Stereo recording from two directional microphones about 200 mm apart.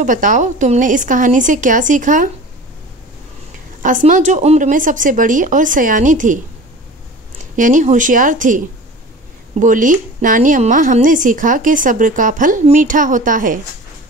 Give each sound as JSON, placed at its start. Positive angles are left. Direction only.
{"t": 0.0, "sound": "a woman's voice", "side_deg": -40}
{"t": 3.8, "sound": "a woman's voice", "side_deg": -40}
{"t": 7.5, "sound": "a woman's voice", "side_deg": -40}